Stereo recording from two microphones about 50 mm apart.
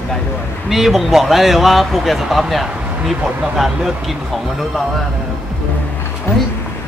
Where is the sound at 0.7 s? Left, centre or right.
Centre.